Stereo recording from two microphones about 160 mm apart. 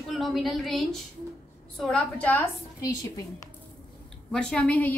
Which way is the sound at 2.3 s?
20° left (ahead or behind).